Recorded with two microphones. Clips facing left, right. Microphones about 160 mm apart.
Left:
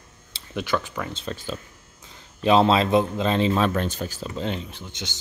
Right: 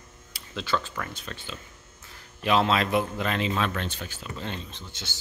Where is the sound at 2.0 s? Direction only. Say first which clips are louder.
Left 6 dB; 25° left (ahead or behind); by 4.3 s 40° left (ahead or behind).